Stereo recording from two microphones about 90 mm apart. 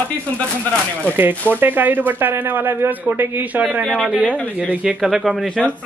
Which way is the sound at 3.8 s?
5° left (ahead or behind).